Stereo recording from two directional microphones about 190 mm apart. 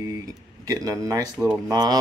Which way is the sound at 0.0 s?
20° right (ahead or behind).